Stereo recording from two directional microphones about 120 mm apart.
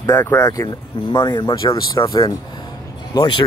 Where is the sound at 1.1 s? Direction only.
40° left (ahead or behind).